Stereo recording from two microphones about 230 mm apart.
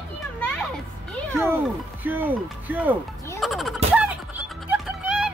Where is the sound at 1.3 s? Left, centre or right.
Centre.